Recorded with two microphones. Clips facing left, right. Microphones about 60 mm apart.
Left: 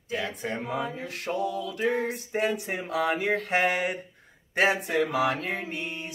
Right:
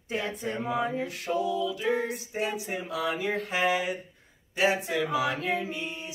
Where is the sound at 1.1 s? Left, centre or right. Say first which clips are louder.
Right 1 dB; left.